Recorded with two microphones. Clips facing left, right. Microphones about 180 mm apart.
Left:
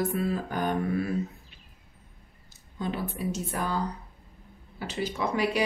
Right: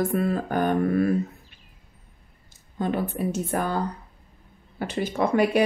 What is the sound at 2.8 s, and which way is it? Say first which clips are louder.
Speech: right 6 dB; 55° right (ahead or behind).